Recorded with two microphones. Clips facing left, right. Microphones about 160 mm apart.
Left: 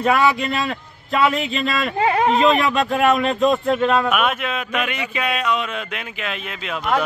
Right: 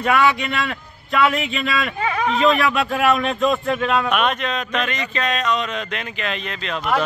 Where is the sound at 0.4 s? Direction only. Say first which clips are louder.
Left 1 dB; 30° left (ahead or behind).